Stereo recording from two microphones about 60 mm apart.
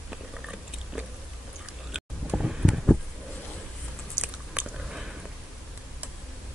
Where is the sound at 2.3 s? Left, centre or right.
Centre.